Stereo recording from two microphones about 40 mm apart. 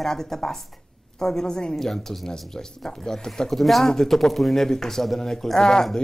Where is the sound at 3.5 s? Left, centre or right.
Centre.